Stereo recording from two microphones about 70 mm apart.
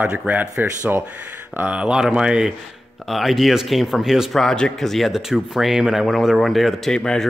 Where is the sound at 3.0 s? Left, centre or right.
Centre.